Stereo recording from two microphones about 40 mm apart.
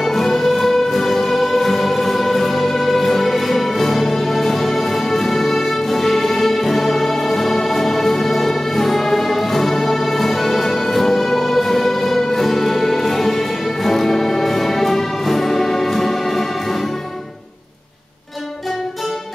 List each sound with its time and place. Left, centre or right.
0.0 s music: centre